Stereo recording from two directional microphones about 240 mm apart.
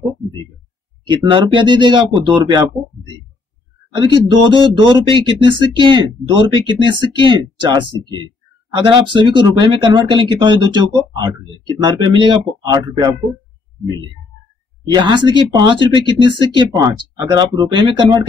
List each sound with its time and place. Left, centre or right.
1.1 s speech: centre
3.9 s speech: centre
15.0 s speech: centre